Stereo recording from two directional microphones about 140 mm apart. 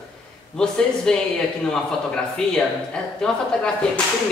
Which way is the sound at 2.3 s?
5° left (ahead or behind).